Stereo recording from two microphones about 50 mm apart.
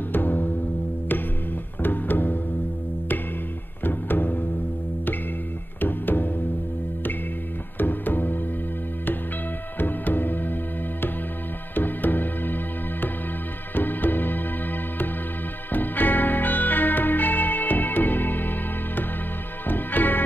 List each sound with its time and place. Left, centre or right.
0.1 s music: left
1.8 s music: left
3.8 s music: left
5.8 s music: left
7.7 s music: left
9.8 s music: left
15.7 s music: left